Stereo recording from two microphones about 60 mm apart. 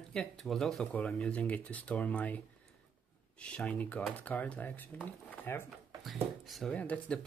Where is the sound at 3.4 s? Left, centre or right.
Left.